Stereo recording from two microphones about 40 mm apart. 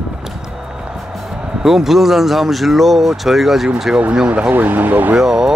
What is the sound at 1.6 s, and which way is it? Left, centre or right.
Speech, centre.